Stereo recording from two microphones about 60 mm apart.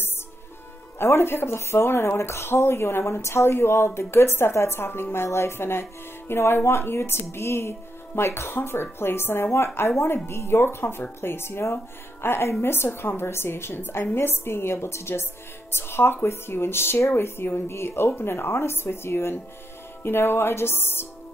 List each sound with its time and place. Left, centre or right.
0.9 s a woman's voice: left